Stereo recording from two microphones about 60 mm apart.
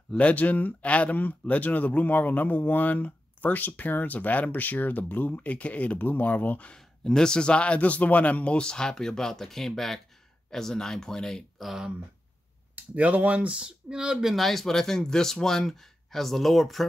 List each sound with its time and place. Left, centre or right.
0.2 s speech: left
6.7 s a man's voice: centre
11.5 s speech: centre
12.7 s speech: right; by 16.8 s centre